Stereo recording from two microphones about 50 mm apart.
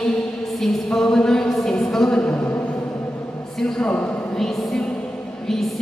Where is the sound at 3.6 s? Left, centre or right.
Centre.